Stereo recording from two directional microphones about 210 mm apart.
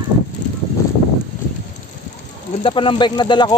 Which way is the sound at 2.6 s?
25° left (ahead or behind).